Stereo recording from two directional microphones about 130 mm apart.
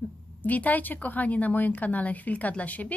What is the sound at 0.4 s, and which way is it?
A woman's voice, 10° left (ahead or behind).